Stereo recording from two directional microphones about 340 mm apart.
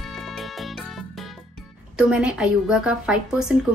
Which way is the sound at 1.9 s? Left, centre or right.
Centre.